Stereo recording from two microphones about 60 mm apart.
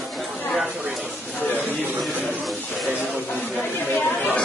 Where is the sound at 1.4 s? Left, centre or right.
Left.